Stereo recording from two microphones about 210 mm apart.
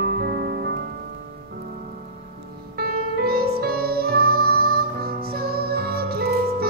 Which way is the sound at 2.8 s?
45° right (ahead or behind).